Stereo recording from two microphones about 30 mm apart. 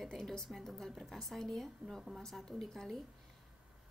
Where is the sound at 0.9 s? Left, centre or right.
Centre.